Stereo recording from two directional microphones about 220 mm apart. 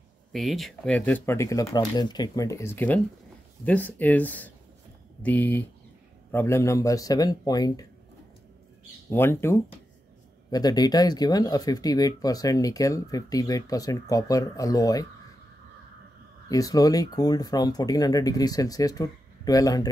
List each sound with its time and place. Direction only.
0.3 s speech: centre (ahead or behind); by 7.8 s 15° left (ahead or behind)
9.1 s speech: 10° left (ahead or behind)
16.4 s speech: 15° left (ahead or behind)